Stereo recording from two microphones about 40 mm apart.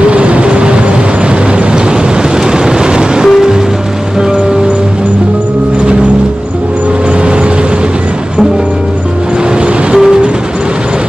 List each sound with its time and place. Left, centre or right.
0.0 s vehicle: right
2.4 s vehicle: centre
9.9 s train: centre